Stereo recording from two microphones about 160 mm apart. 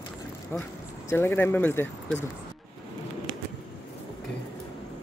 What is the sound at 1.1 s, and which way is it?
Speech, 15° left (ahead or behind).